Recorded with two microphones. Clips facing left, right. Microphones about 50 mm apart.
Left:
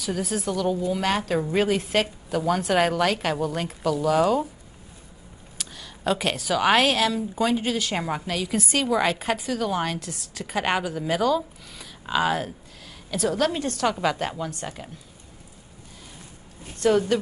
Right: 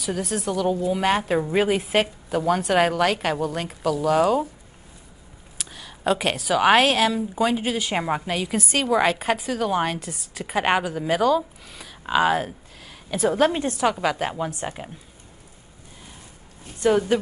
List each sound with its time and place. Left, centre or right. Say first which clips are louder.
0.0 s a woman's voice: right 1 dB; centre
5.6 s a woman's voice: right 2 dB; centre; by 13.8 s right
13.8 s a woman's voice: right 1 dB; centre
14.6 s a woman's voice: right 4 dB; centre
16.8 s a woman's voice: right 1 dB; centre